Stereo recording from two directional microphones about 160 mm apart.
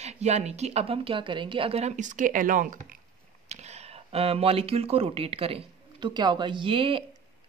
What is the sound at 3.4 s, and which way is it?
Speech, 45° right (ahead or behind).